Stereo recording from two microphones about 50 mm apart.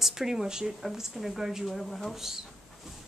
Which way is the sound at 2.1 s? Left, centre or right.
Centre.